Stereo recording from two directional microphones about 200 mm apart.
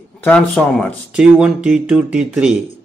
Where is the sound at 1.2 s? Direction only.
5° right (ahead or behind).